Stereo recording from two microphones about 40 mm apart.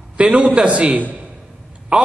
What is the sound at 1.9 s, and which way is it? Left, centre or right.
Speech, right.